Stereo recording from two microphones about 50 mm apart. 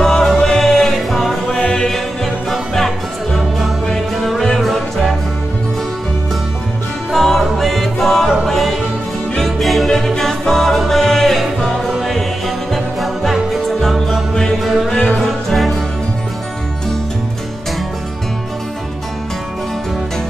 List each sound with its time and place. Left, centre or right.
0.0 s music: centre
3.9 s music: centre
7.1 s music: centre
11.6 s music: centre